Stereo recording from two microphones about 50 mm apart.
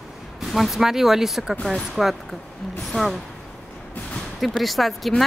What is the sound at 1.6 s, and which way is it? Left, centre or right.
Speech, centre.